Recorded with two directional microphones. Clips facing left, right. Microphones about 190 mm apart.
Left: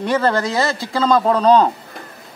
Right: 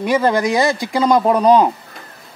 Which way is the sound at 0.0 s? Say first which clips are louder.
Right 2 dB; 10° right (ahead or behind).